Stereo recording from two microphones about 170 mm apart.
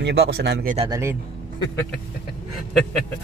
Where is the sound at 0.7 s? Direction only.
30° right (ahead or behind).